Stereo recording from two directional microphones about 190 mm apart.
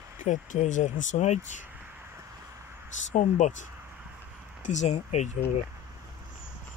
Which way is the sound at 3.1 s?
40° left (ahead or behind).